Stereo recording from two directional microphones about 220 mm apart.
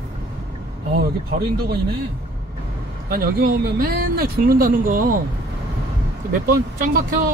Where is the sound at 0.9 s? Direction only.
45° right (ahead or behind).